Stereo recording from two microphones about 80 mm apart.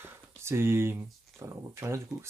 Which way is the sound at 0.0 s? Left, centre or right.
Right.